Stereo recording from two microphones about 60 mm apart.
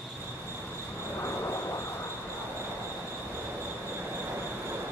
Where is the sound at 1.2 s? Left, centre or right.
Left.